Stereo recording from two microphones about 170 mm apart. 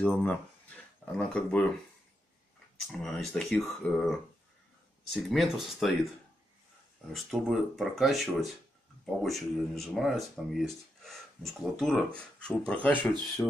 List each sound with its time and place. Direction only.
0.0 s speech: 10° left (ahead or behind)
2.9 s speech: centre (ahead or behind)
7.1 s speech: centre (ahead or behind)